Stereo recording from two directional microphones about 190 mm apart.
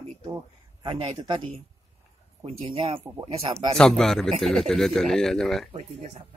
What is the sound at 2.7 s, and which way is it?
Speech, 35° right (ahead or behind).